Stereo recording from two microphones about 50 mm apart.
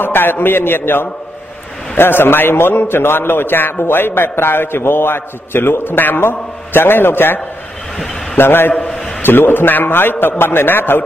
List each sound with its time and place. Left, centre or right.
0.0 s a man's voice: left
8.4 s a man's voice: left